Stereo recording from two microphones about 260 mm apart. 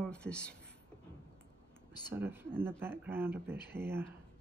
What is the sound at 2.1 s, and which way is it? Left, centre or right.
Speech, centre.